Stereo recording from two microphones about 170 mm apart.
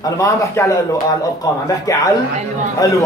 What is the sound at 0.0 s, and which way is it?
A man's voice, 20° left (ahead or behind).